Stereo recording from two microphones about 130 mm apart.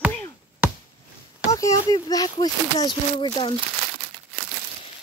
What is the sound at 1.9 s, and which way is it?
Speech, 30° left (ahead or behind).